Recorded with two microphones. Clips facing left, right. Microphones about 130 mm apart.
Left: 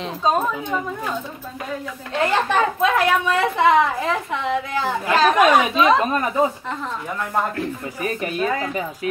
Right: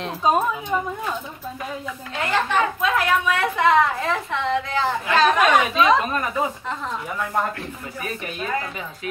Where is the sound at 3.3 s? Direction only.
25° left (ahead or behind).